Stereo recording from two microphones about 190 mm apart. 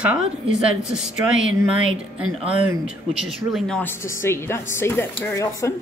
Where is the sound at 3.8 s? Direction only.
10° left (ahead or behind).